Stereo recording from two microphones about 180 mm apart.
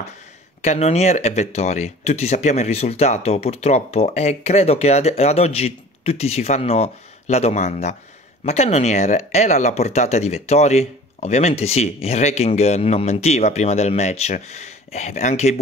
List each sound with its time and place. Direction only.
0.6 s speech: 35° left (ahead or behind)